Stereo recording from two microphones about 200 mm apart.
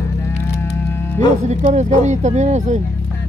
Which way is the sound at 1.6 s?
35° right (ahead or behind).